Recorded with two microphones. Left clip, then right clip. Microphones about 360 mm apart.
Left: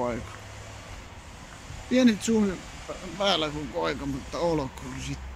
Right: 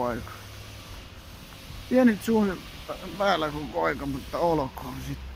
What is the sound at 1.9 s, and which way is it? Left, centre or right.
Speech, centre.